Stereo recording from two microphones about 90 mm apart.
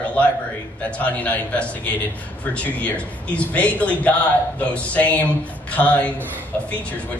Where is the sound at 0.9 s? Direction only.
15° left (ahead or behind).